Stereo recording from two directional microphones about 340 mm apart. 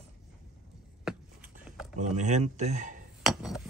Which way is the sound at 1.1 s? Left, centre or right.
Centre.